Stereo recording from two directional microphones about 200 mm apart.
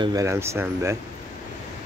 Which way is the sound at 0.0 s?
15° right (ahead or behind).